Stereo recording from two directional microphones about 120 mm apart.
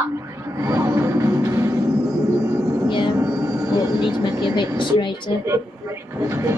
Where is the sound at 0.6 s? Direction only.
25° right (ahead or behind).